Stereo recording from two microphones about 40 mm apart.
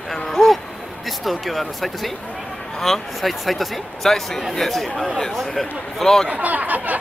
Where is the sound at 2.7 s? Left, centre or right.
Centre.